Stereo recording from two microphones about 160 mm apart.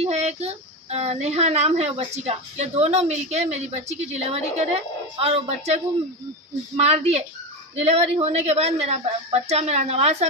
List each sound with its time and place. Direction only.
0.0 s a woman's voice: 45° right (ahead or behind)
6.8 s a woman's voice: 40° right (ahead or behind)